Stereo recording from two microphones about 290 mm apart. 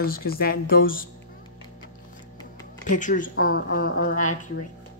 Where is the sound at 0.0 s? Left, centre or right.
Left.